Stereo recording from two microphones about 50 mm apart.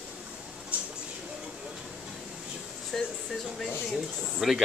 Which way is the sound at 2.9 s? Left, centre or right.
Centre.